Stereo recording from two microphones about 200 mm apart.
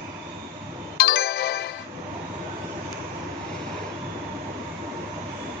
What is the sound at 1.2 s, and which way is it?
Music, 55° left (ahead or behind).